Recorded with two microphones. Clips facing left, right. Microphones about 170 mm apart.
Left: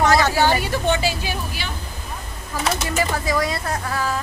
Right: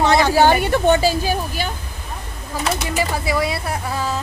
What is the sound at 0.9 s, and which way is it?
Speech, 40° right (ahead or behind).